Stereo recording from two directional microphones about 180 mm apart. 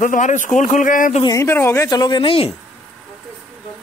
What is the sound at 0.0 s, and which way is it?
A man's voice, 45° left (ahead or behind).